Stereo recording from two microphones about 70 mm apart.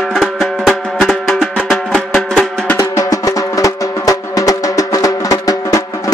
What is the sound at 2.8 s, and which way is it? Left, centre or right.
Music, left.